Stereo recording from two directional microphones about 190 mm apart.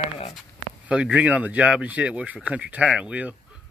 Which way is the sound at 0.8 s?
5° right (ahead or behind).